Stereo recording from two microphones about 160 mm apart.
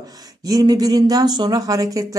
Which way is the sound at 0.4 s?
25° right (ahead or behind).